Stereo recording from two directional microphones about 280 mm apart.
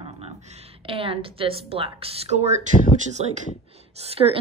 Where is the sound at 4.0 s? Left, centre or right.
Right.